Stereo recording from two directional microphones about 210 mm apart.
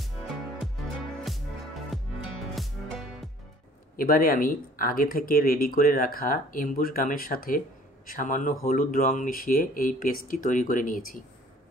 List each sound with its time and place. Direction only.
0.6 s music: centre (ahead or behind)
3.9 s speech: 45° left (ahead or behind)